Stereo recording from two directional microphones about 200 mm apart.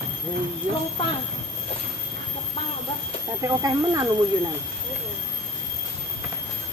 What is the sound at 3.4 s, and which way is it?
Speech, 20° right (ahead or behind).